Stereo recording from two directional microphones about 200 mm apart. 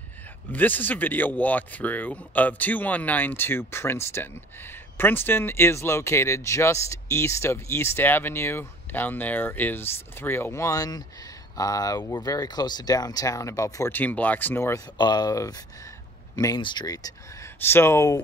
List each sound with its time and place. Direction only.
0.5 s speech: 10° left (ahead or behind)